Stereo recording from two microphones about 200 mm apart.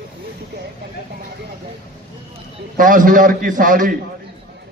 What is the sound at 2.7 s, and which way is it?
A man's voice, 40° right (ahead or behind).